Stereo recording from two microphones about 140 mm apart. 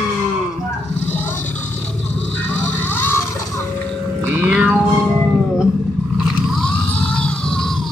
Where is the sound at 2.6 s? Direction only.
15° left (ahead or behind).